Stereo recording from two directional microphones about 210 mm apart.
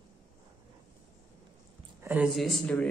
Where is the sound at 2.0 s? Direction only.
5° right (ahead or behind).